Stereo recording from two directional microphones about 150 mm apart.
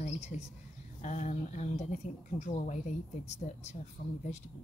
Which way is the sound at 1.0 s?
55° left (ahead or behind).